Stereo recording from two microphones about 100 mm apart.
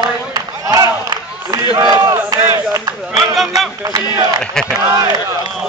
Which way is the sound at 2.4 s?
30° right (ahead or behind).